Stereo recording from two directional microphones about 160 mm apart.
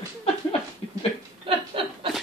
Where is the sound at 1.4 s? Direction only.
35° right (ahead or behind).